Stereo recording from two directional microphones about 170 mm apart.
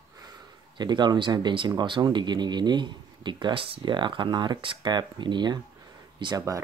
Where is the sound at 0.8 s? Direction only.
25° right (ahead or behind).